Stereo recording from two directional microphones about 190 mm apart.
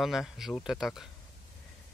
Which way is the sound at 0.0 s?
Centre (ahead or behind).